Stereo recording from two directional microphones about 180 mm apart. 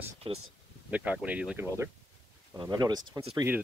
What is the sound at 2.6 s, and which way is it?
Speech, 20° right (ahead or behind).